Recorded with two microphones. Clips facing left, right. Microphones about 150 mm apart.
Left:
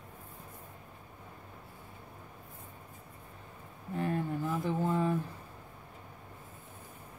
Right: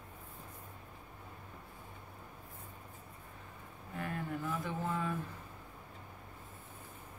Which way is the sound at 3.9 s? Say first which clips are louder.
Left 7 dB; 30° left (ahead or behind).